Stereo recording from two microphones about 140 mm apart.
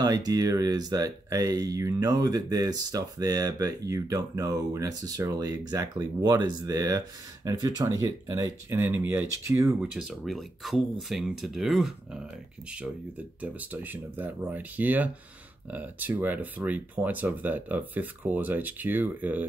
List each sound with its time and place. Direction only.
0.0 s speech: 25° right (ahead or behind)
9.8 s speech: 5° right (ahead or behind)
13.4 s speech: 10° right (ahead or behind)